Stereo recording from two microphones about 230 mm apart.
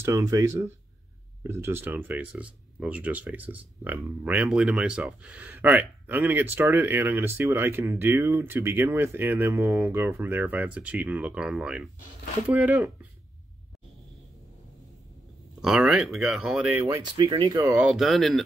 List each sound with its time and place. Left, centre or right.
0.0 s speech: centre
15.6 s speech: centre
16.8 s speech: centre
17.7 s speech: centre